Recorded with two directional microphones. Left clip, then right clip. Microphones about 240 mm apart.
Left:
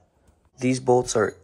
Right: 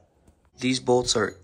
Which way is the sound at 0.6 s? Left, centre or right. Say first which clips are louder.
Left 2 dB; centre.